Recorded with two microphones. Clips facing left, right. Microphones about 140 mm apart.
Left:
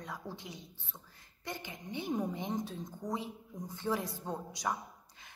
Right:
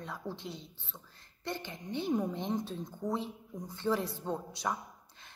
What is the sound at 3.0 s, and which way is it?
Speech, 5° right (ahead or behind).